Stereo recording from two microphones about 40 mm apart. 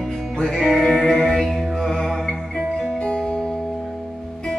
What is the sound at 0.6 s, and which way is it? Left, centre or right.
Music, centre.